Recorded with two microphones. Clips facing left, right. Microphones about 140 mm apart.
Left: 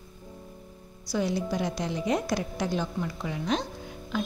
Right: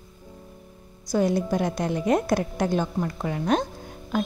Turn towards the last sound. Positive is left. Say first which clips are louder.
# right 4 dB
turn(degrees=-50)  # may be behind; listen again after turning